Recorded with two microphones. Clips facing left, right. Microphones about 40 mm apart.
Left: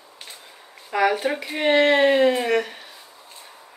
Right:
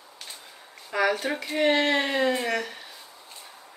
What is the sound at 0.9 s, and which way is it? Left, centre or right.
Speech, centre.